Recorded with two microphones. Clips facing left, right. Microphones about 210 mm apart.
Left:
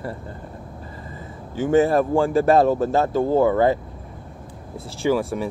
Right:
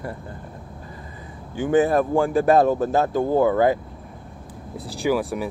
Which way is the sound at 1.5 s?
15° right (ahead or behind).